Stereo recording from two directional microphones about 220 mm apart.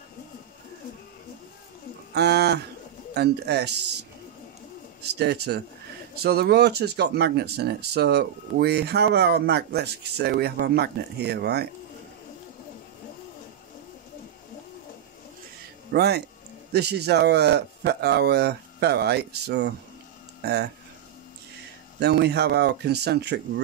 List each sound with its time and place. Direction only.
2.1 s speech: 50° right (ahead or behind)
5.0 s speech: 50° right (ahead or behind)
15.9 s speech: 50° right (ahead or behind)
22.0 s speech: 50° right (ahead or behind)